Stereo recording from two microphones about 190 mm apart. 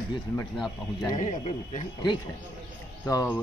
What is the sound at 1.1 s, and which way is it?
Speech, 35° left (ahead or behind).